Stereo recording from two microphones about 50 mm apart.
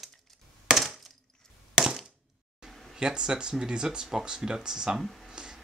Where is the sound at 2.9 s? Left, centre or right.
Centre.